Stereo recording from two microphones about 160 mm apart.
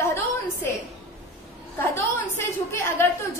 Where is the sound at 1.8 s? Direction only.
15° left (ahead or behind).